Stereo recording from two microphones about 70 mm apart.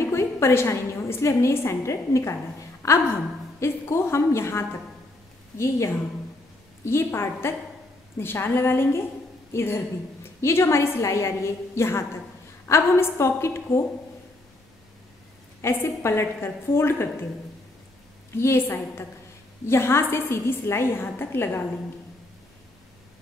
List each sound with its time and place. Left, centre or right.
0.0 s a woman's voice: left
15.6 s a woman's voice: left
18.3 s a woman's voice: left